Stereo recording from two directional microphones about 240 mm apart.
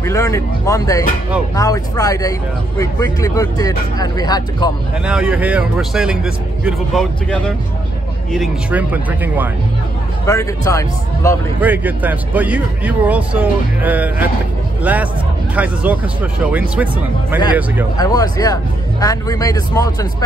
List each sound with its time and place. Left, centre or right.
0.0 s speech: centre
5.0 s a man's voice: centre
10.2 s speech: centre
11.6 s a man's voice: centre
17.9 s speech: centre